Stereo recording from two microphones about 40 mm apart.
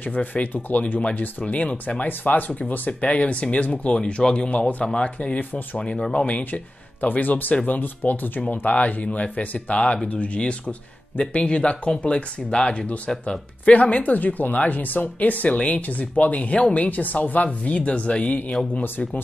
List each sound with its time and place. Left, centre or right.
0.1 s speech: left
1.4 s speech: left
2.0 s speech: left
4.0 s speech: left
4.5 s speech: left
6.2 s speech: left
8.4 s speech: left
13.7 s speech: left